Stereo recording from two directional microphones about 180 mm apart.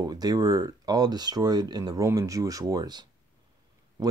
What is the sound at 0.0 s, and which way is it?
Speech, 20° right (ahead or behind).